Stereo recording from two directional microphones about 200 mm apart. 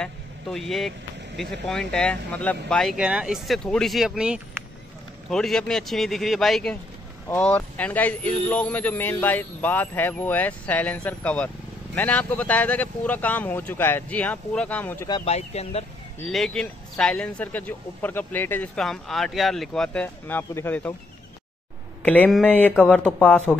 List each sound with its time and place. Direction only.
0.0 s speech: centre (ahead or behind)
15.0 s speech: 25° left (ahead or behind)
16.2 s speech: centre (ahead or behind)
22.0 s speech: 5° left (ahead or behind)